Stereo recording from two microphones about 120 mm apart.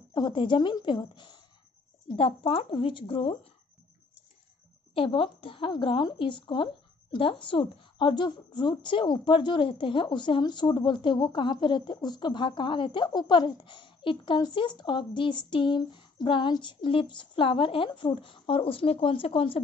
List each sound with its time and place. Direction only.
0.1 s a woman's voice: 40° left (ahead or behind)
2.0 s speech: 50° left (ahead or behind)
4.9 s speech: 45° left (ahead or behind)